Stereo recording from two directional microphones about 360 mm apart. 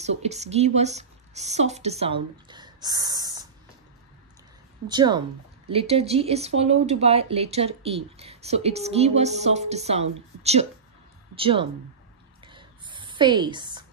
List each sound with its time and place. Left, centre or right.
0.2 s speech: centre
4.8 s speech: centre
12.4 s a sound: centre